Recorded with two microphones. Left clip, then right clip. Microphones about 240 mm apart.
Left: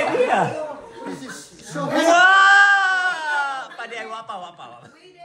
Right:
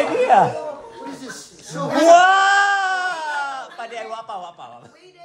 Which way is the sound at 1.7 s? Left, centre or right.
Right.